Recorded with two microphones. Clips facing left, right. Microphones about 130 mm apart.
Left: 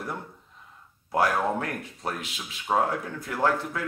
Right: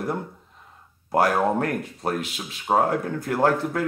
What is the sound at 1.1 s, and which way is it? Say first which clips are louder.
Speech: right 4 dB; 45° right (ahead or behind).